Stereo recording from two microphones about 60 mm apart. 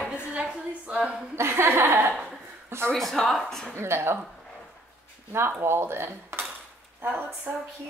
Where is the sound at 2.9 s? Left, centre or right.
Centre.